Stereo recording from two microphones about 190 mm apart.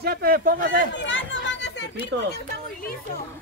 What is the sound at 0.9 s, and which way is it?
Chatter, 75° left (ahead or behind).